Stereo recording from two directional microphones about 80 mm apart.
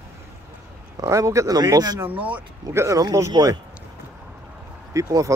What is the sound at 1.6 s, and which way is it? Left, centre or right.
Speech, right.